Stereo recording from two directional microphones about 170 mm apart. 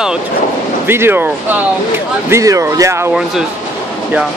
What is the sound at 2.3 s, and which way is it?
Speech, 20° right (ahead or behind).